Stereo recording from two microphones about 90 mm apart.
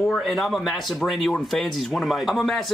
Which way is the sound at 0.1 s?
Centre (ahead or behind).